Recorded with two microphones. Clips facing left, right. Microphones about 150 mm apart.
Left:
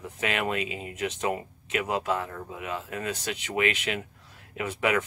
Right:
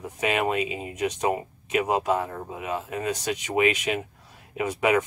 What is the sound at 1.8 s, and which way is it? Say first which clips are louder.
Speech: right 3 dB; 15° right (ahead or behind).